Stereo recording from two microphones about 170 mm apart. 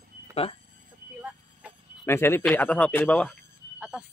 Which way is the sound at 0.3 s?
35° left (ahead or behind).